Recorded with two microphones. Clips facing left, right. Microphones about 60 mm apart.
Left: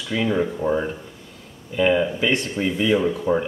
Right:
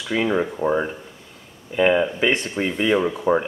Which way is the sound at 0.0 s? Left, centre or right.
Centre.